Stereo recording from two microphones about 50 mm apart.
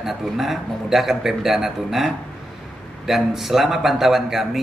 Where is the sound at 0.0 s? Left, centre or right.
Centre.